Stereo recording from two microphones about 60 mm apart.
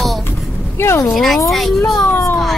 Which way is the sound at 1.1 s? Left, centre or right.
Centre.